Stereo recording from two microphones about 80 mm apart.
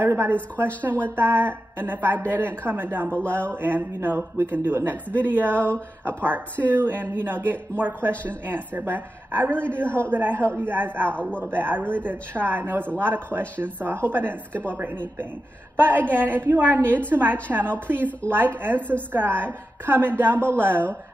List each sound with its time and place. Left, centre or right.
0.0 s a man's voice: right
18.8 s speech: centre
19.1 s a man's voice: right